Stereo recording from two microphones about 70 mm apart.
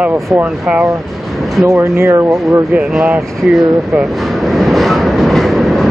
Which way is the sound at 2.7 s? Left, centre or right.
Centre.